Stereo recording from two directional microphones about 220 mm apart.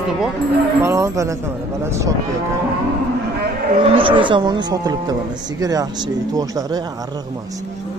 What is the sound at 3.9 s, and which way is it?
Speech, 25° right (ahead or behind).